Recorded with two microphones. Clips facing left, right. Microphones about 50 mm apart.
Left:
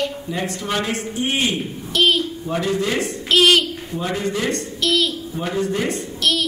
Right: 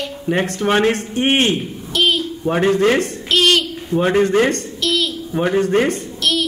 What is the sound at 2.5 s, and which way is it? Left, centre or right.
Speech, right.